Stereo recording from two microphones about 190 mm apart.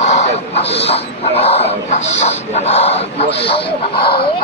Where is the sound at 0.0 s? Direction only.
35° left (ahead or behind).